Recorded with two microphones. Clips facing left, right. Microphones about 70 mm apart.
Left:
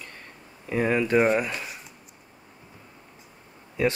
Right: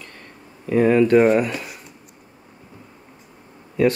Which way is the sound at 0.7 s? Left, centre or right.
Centre.